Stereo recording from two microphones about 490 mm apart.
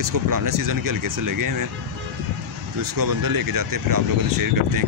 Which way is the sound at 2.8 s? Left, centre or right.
Right.